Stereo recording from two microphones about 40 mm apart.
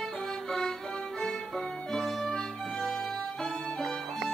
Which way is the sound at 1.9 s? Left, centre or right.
Centre.